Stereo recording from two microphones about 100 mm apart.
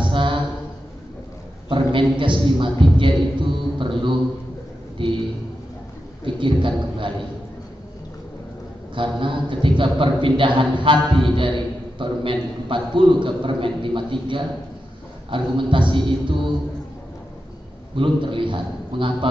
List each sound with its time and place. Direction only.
0.0 s a sound: 55° right (ahead or behind)
1.7 s a man's voice: 60° right (ahead or behind)
6.2 s a man's voice: 55° right (ahead or behind)
8.9 s a man's voice: 55° right (ahead or behind)
17.9 s a man's voice: 60° right (ahead or behind)